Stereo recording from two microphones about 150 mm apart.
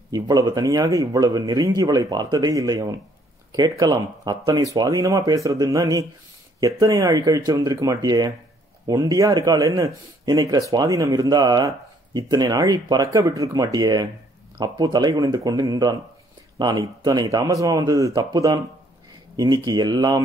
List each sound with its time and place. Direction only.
0.1 s speech: 25° right (ahead or behind)